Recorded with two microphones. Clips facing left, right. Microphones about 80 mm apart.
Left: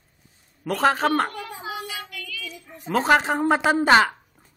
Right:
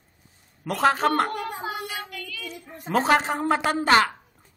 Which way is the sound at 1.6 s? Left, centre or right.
Right.